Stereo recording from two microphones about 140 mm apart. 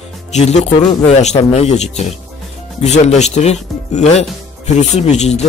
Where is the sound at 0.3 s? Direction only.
55° left (ahead or behind).